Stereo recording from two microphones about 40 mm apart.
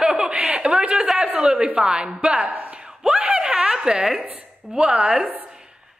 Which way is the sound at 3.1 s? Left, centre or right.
Right.